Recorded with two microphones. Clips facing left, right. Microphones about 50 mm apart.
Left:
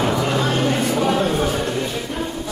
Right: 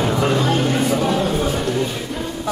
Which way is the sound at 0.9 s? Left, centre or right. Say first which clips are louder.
Even; centre.